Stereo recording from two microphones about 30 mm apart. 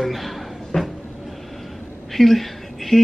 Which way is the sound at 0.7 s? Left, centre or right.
Left.